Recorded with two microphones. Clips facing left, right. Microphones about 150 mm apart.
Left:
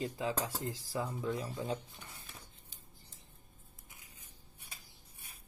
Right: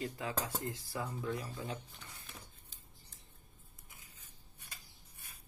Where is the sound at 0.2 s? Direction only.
25° left (ahead or behind).